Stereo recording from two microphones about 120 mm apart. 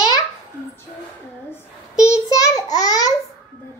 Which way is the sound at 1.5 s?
25° left (ahead or behind).